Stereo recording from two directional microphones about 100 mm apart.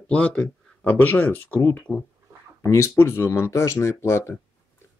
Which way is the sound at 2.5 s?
30° left (ahead or behind).